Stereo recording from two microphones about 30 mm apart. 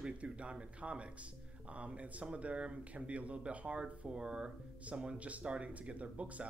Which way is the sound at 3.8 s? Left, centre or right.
Right.